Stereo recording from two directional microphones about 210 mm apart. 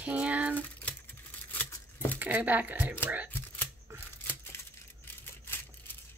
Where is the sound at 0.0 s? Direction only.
5° right (ahead or behind).